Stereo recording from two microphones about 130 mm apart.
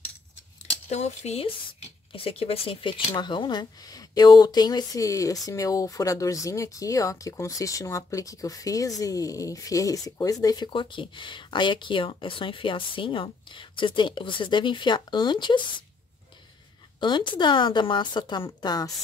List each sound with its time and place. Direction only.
0.8 s speech: 60° left (ahead or behind); by 15.7 s 35° left (ahead or behind)
17.0 s speech: 35° left (ahead or behind)